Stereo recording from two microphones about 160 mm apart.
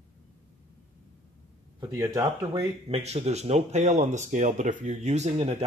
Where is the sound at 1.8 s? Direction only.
20° right (ahead or behind).